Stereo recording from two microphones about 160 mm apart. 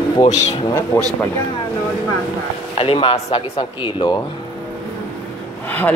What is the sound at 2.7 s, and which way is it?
Speech, 35° left (ahead or behind).